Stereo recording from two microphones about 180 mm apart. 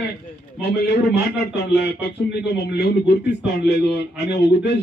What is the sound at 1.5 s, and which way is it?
A man's voice, 70° left (ahead or behind).